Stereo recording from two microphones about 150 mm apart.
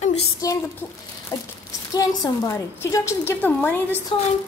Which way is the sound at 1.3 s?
20° left (ahead or behind).